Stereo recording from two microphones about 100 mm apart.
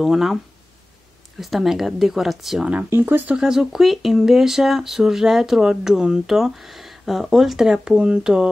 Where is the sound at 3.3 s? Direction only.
5° right (ahead or behind).